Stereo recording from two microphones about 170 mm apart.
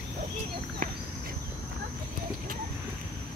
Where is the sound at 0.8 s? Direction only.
55° right (ahead or behind).